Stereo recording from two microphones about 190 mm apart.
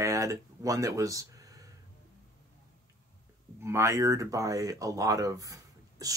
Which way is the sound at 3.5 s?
15° right (ahead or behind).